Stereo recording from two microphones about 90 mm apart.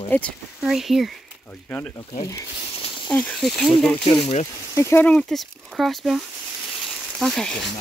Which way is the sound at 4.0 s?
65° left (ahead or behind).